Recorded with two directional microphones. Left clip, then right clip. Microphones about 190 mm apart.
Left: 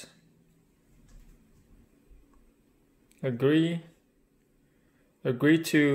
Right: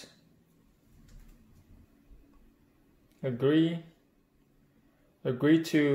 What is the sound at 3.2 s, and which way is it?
Speech, 30° left (ahead or behind).